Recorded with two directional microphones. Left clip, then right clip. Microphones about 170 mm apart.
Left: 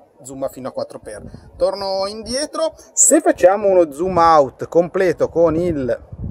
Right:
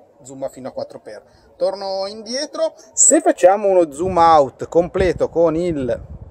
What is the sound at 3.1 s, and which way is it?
Speech, 10° left (ahead or behind).